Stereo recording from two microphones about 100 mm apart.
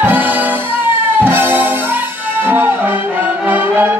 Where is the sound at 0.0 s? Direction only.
20° right (ahead or behind).